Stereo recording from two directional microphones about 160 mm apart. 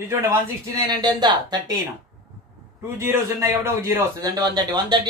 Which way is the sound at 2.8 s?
15° right (ahead or behind).